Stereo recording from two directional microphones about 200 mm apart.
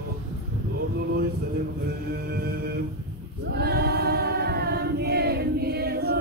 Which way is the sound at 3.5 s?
55° right (ahead or behind).